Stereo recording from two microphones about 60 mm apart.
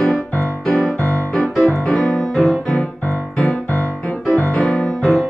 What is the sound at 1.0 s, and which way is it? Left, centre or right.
Music, centre.